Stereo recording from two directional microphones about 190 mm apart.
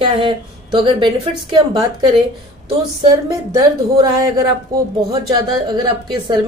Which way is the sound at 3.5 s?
20° right (ahead or behind).